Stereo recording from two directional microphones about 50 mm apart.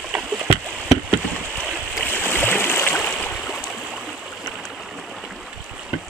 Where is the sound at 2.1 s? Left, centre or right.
Left.